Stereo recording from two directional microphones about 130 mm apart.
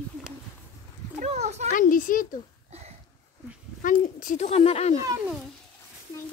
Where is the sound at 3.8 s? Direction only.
90° left.